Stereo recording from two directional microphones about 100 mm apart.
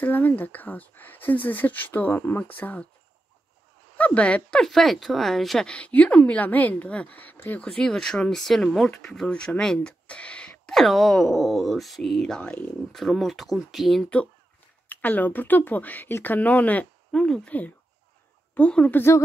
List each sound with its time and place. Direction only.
0.0 s speech: 20° left (ahead or behind)
4.0 s speech: 15° left (ahead or behind)
14.0 s speech: 15° left (ahead or behind)